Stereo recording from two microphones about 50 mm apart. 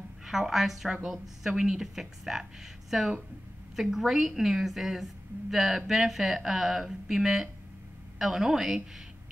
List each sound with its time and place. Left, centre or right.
0.2 s a woman's voice: centre
0.8 s a woman's voice: centre
1.1 s a woman's voice: centre
1.5 s a woman's voice: centre